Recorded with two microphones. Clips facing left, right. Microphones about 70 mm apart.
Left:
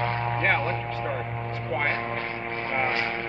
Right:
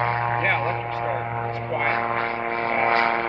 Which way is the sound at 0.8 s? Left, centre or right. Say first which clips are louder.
Right 4 dB; centre.